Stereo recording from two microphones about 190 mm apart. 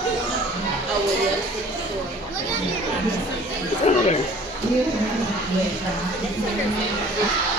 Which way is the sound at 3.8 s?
35° left (ahead or behind).